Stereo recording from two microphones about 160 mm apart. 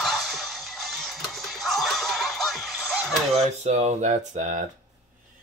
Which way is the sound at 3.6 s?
45° right (ahead or behind).